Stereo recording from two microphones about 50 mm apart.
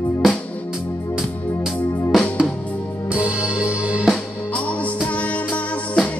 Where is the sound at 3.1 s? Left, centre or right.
Right.